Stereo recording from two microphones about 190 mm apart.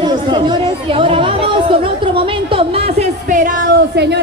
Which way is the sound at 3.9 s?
60° right (ahead or behind).